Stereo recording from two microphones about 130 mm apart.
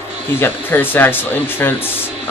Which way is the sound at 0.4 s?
15° left (ahead or behind).